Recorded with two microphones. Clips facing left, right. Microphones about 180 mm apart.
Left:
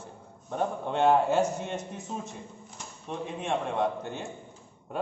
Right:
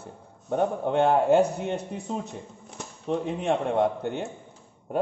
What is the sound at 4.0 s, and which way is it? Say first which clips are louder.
Speech: right 6 dB; 60° right (ahead or behind).